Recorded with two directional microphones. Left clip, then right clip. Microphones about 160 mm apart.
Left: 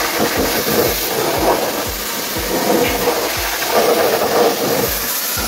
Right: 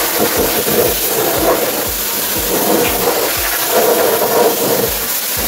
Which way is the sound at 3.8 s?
15° right (ahead or behind).